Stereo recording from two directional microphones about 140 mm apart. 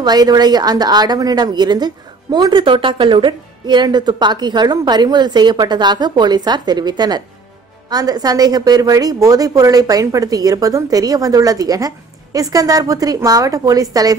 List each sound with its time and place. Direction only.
0.0 s a woman's voice: 30° right (ahead or behind)